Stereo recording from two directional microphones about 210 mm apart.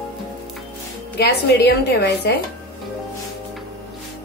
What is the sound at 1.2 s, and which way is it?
A woman's voice, 50° left (ahead or behind).